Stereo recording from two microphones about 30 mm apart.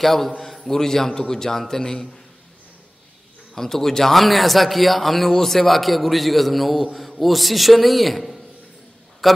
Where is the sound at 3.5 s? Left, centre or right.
Centre.